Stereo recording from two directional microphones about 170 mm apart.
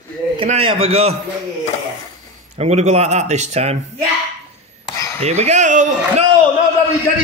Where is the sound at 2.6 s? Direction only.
40° right (ahead or behind).